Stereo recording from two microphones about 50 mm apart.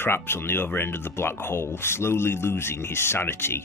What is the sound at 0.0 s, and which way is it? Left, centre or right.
Speech, left.